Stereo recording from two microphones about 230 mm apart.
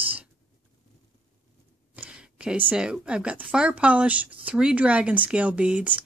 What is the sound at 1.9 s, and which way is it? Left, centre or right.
Speech, centre.